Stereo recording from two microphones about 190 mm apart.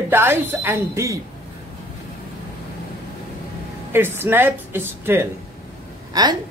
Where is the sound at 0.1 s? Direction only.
10° right (ahead or behind).